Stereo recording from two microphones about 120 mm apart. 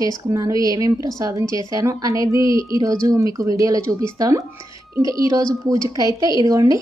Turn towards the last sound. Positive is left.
turn(degrees=-30)  # may be behind; listen again after turning